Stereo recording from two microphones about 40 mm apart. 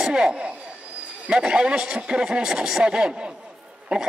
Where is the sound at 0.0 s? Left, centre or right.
Centre.